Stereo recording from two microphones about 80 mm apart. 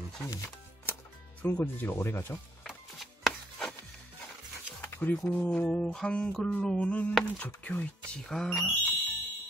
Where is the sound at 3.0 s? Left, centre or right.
Centre.